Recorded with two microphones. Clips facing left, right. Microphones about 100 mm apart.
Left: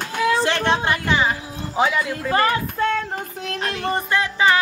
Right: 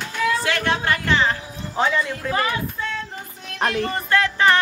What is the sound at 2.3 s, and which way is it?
Music, 50° left (ahead or behind).